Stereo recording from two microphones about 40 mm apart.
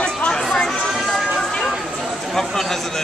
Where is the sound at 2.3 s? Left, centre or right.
Centre.